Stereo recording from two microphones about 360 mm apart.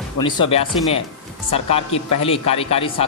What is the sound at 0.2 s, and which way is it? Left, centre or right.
Speech, centre.